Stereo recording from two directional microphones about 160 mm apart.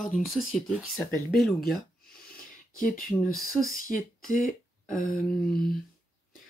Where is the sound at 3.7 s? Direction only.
55° left (ahead or behind).